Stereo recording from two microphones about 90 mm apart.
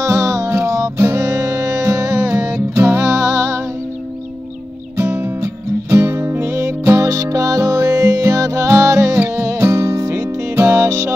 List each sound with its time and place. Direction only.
0.0 s music: 35° right (ahead or behind)
4.9 s music: 30° right (ahead or behind)